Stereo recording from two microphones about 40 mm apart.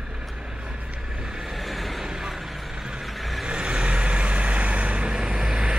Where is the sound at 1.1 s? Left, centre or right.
Centre.